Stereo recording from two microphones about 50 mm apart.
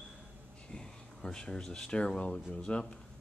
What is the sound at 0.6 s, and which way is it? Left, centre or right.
Speech, centre.